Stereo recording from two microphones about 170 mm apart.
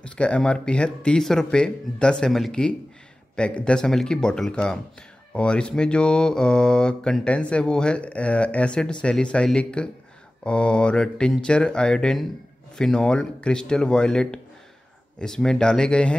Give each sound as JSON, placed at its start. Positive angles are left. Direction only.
{"t": 0.0, "sound": "mantra", "side_deg": 5}